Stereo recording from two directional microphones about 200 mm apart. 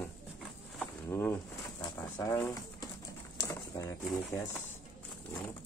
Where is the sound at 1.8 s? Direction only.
15° left (ahead or behind).